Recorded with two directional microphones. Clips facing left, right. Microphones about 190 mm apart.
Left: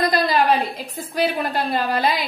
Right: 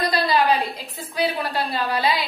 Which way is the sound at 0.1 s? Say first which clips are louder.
Left 2 dB; 50° left (ahead or behind).